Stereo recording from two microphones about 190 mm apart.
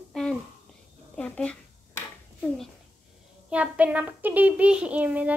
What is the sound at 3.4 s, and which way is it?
Speech, 5° right (ahead or behind).